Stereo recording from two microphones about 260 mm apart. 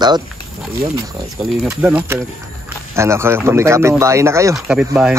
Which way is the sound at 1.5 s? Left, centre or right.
Centre.